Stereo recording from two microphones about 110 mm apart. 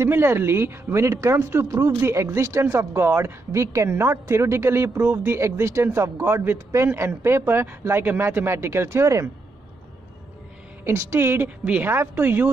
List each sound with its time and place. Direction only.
0.0 s speech: 20° right (ahead or behind)
10.8 s speech: 25° right (ahead or behind)